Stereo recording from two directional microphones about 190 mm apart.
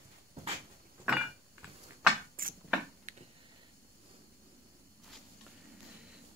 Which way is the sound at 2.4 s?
50° right (ahead or behind).